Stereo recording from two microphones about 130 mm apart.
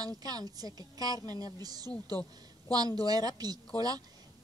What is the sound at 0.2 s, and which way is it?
A woman's voice, 30° right (ahead or behind).